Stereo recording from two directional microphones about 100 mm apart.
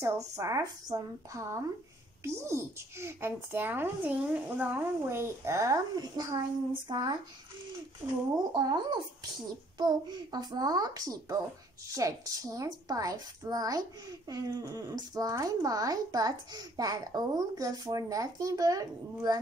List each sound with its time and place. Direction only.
0.0 s a child's voice: 35° right (ahead or behind)